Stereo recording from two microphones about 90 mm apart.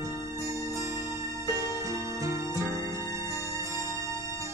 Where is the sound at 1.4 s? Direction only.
35° right (ahead or behind).